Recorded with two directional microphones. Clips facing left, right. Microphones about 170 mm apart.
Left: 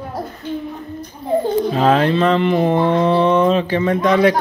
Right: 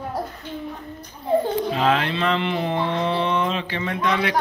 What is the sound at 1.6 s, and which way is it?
Mantra, 40° left (ahead or behind).